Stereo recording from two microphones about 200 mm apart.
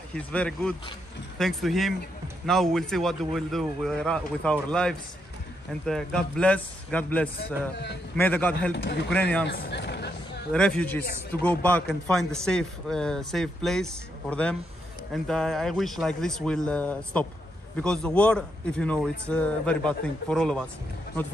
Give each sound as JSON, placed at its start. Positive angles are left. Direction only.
{"t": 0.1, "sound": "a man's voice", "side_deg": 5}
{"t": 8.7, "sound": "speech", "side_deg": 60}
{"t": 9.1, "sound": "a man's voice", "side_deg": 5}
{"t": 9.5, "sound": "a sound", "side_deg": 60}
{"t": 10.5, "sound": "a man's voice", "side_deg": 5}